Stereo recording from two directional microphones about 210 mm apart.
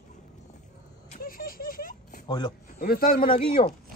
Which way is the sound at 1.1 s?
40° left (ahead or behind).